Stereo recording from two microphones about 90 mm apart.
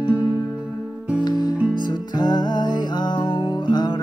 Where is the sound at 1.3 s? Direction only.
50° left (ahead or behind).